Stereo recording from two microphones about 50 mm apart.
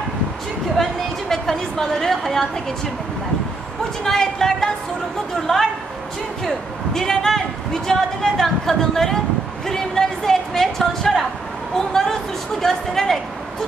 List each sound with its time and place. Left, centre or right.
1.3 s a woman's voice: centre
4.0 s a man's voice: centre